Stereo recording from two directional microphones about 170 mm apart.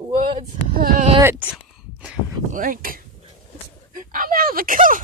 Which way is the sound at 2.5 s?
55° right (ahead or behind).